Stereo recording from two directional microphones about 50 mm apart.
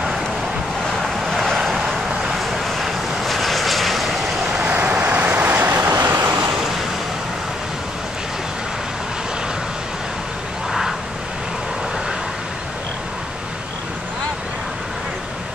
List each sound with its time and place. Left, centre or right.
0.9 s vehicle: centre
1.8 s vehicle: centre
2.3 s vehicle: centre
4.6 s vehicle: right
5.8 s vehicle: right
6.5 s vehicle: centre
10.7 s vehicle: centre